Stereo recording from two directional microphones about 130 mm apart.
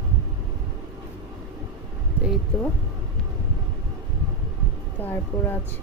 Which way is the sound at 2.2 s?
10° right (ahead or behind).